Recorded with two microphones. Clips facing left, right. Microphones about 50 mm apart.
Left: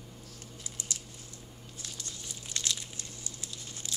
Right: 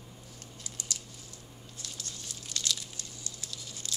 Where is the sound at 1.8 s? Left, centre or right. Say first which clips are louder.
Even; centre.